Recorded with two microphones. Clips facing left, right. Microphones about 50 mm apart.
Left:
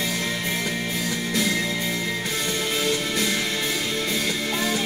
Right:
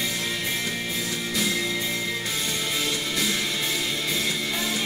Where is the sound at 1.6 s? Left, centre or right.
Left.